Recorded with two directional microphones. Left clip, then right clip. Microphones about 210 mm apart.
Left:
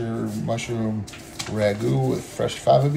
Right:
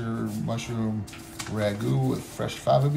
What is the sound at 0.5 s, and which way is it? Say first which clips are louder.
Speech: left 7 dB; 25° right (ahead or behind).